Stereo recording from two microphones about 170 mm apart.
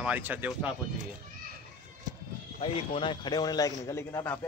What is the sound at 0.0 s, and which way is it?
Speech, 10° right (ahead or behind).